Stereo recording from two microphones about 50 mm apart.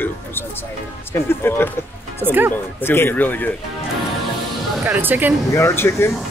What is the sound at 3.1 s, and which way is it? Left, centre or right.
Music, left.